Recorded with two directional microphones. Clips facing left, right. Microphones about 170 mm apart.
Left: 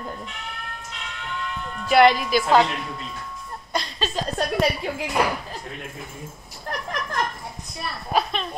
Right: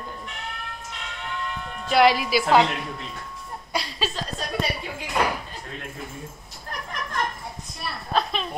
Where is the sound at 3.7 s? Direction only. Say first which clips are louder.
Left 1 dB; 10° right (ahead or behind).